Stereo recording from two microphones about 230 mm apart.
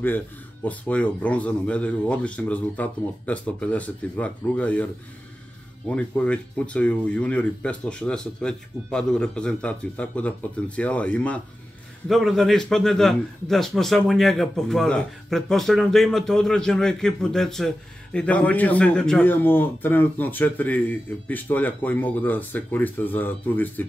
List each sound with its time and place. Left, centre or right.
0.7 s a man's voice: centre
5.9 s a man's voice: centre